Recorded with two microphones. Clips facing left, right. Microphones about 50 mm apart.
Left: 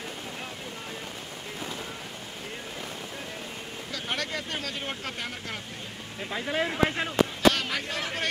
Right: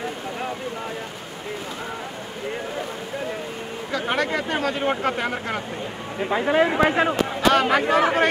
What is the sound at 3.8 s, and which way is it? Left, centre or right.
Speech, right.